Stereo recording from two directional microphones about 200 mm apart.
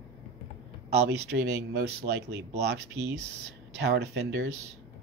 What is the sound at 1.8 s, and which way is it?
Speech, 55° right (ahead or behind).